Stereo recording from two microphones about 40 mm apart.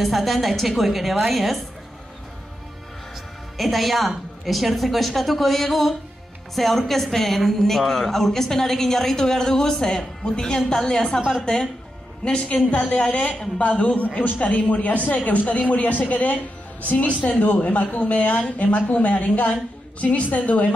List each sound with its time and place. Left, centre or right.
0.0 s a woman's voice: centre
3.5 s a woman's voice: centre
12.2 s a woman's voice: left